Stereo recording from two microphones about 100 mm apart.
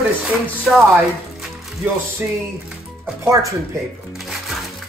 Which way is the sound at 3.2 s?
30° right (ahead or behind).